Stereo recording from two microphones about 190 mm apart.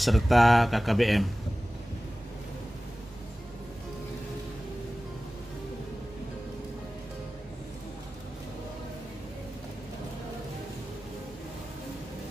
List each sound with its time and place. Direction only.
0.0 s speech: centre (ahead or behind)